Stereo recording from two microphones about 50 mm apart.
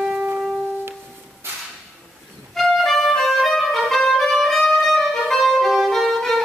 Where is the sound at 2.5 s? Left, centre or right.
Centre.